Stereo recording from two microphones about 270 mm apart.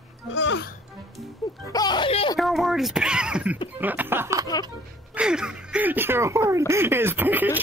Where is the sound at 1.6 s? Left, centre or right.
Centre.